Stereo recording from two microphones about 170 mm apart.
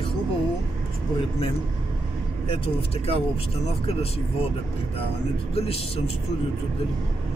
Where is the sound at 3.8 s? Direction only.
35° left (ahead or behind).